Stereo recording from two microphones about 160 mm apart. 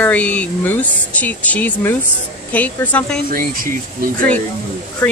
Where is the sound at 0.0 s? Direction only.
10° left (ahead or behind).